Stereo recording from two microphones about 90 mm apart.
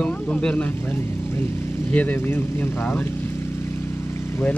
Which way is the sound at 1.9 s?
20° left (ahead or behind).